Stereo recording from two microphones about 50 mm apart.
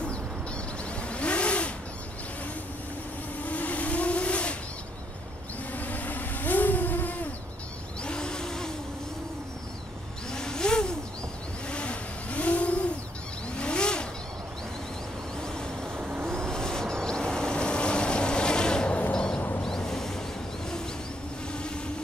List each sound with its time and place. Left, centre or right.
0.9 s vehicle: left
3.4 s vehicle: left
5.8 s vehicle: left
8.0 s a sound: centre
10.3 s a sound: centre
11.7 s vehicle: left
15.4 s vehicle: centre
16.0 s vehicle: right
16.3 s vehicle: centre
19.6 s a sound: centre